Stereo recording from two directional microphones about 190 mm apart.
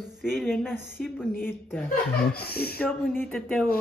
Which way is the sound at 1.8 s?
55° left (ahead or behind).